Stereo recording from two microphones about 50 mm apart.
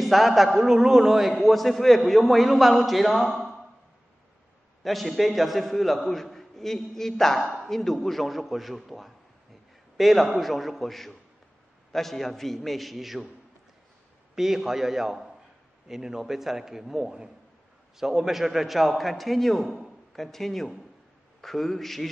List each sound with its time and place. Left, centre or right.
0.0 s a man's voice: centre
4.8 s a man's voice: centre
14.3 s a man's voice: centre